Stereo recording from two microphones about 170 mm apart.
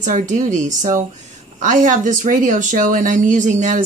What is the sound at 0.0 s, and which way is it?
Speech, 45° right (ahead or behind).